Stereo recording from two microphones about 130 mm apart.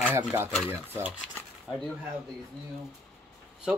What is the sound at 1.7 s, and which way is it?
Speech, 5° right (ahead or behind).